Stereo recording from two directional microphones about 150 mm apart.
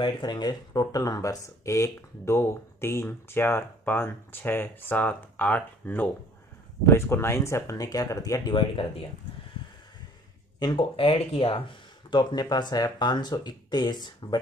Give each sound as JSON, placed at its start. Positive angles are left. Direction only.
{"t": 0.0, "sound": "speech", "side_deg": 30}
{"t": 10.6, "sound": "speech", "side_deg": 30}